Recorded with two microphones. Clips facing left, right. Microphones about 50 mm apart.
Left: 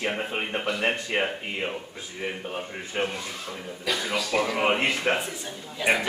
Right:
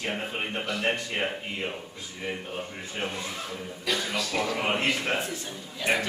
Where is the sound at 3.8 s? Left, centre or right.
Centre.